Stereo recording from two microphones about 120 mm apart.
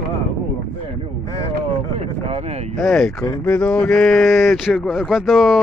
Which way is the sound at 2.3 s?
65° right (ahead or behind).